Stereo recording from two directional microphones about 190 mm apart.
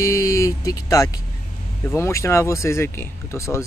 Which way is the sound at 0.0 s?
15° left (ahead or behind).